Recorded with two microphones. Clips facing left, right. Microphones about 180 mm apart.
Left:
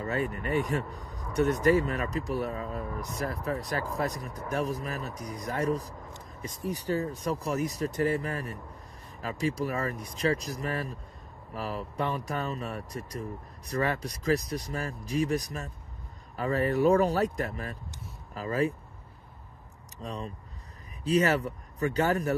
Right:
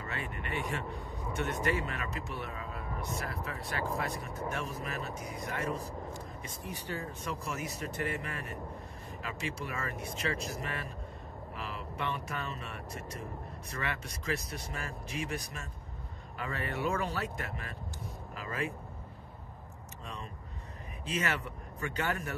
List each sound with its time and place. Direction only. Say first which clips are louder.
0.0 s speech: left 9 dB; 40° left (ahead or behind)
20.0 s speech: left 8 dB; 35° left (ahead or behind)